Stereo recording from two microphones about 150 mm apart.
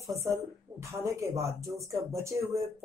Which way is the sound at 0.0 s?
20° right (ahead or behind).